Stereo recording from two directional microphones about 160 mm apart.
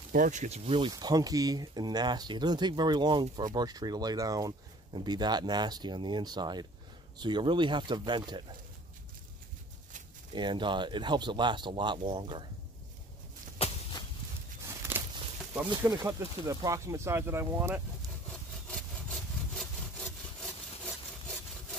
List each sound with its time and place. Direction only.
0.1 s speech: 55° right (ahead or behind)
0.7 s speech: 30° right (ahead or behind)
10.3 s speech: 30° right (ahead or behind)
14.7 s a sound: 15° right (ahead or behind)
15.8 s speech: 20° right (ahead or behind)
18.7 s sawing: 5° left (ahead or behind)